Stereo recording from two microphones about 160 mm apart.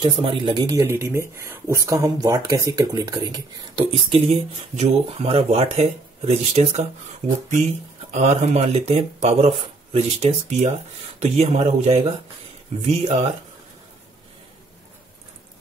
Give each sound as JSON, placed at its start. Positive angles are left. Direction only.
{"t": 0.0, "sound": "speech", "side_deg": -35}
{"t": 0.7, "sound": "speech", "side_deg": -15}